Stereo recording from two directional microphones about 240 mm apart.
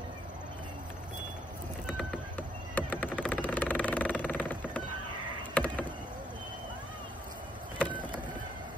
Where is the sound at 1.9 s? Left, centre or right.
Centre.